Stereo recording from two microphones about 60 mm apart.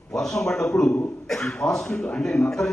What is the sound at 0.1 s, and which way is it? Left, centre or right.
A man's voice, centre.